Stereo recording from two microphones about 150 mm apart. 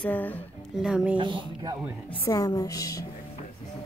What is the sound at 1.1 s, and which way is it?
Speech, 35° right (ahead or behind).